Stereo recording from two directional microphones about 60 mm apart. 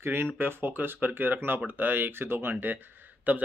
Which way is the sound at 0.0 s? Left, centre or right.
Right.